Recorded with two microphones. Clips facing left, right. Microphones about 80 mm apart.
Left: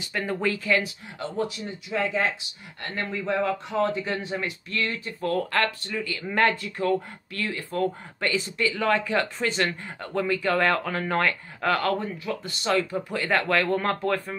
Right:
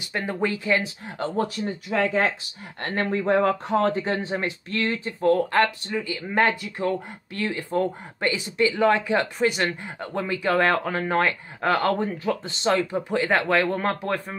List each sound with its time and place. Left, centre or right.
0.4 s speech: centre
1.0 s speech: right
4.1 s speech: right
11.9 s speech: right
12.4 s speech: right